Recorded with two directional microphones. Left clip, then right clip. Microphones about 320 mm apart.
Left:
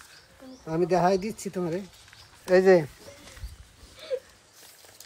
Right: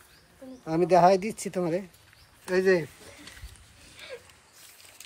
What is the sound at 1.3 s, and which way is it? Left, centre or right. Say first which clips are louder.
Speech: right 1 dB; right.